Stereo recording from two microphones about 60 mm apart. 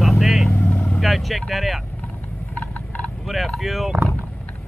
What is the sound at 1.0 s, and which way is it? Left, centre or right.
Speech, centre.